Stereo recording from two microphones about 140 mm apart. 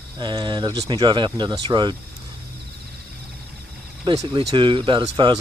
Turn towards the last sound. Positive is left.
turn(degrees=-35)  # may be behind; listen again after turning